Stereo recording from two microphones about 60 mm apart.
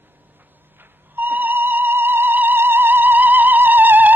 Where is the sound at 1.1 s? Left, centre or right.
Right.